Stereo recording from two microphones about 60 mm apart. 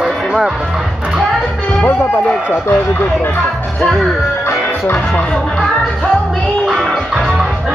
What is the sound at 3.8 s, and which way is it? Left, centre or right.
Music, centre.